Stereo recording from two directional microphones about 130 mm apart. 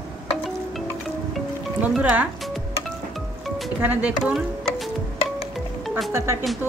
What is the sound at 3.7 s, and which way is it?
Speech, 10° right (ahead or behind).